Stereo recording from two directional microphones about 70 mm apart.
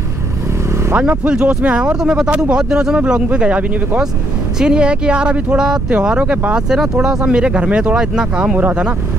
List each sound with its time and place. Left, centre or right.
0.9 s speech: centre
6.7 s speech: centre
8.5 s speech: right